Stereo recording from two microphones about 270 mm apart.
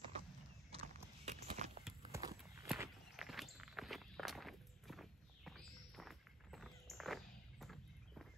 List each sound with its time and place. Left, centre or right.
0.7 s horse: right
1.3 s a sound: right
2.1 s walk: centre